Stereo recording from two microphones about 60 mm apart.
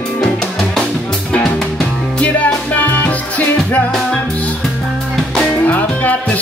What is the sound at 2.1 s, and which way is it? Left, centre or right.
Music, left.